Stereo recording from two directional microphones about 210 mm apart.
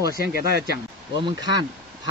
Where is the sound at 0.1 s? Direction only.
50° right (ahead or behind).